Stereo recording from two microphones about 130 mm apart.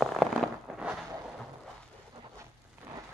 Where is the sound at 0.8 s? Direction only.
10° right (ahead or behind).